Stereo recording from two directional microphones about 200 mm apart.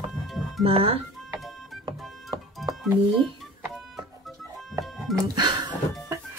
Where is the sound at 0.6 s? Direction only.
30° right (ahead or behind).